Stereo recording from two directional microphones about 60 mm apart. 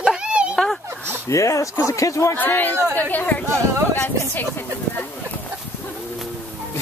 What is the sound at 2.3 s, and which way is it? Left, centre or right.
Speech, left.